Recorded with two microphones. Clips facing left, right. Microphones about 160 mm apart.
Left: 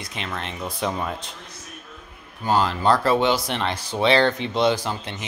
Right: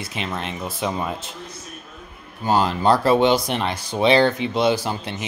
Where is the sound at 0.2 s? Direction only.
15° right (ahead or behind).